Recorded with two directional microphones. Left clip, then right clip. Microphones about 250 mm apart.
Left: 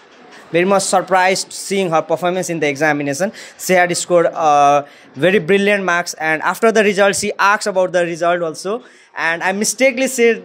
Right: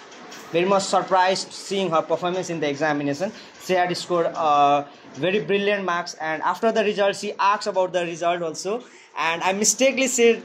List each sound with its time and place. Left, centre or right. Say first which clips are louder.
0.5 s a man's voice: left 6 dB; left